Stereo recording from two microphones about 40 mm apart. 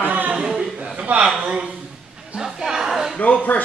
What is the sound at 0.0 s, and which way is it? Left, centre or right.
Chuckle, right.